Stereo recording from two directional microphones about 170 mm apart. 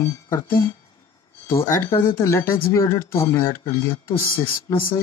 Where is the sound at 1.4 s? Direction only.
15° left (ahead or behind).